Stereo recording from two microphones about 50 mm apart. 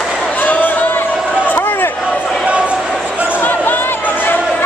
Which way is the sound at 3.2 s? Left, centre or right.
Left.